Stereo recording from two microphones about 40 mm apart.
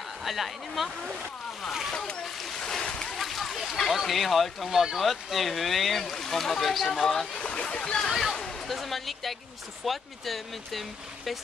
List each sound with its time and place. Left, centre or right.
0.2 s speech: centre
2.5 s speech: centre
3.2 s speech: centre
7.3 s speech: left
8.1 s speech: centre